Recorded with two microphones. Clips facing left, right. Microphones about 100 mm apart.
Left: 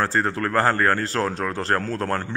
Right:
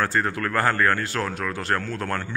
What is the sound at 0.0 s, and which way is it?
Speech, 30° left (ahead or behind).